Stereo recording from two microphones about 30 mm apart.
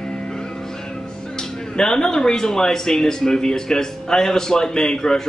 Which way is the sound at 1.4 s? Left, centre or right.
Left.